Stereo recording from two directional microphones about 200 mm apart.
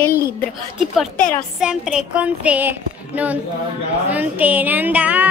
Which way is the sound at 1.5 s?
5° right (ahead or behind).